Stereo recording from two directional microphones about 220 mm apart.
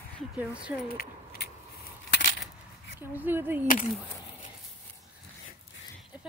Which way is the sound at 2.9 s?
10° right (ahead or behind).